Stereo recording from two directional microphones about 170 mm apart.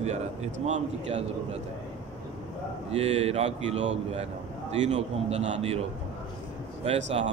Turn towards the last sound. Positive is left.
turn(degrees=-35)  # may be behind; listen again after turning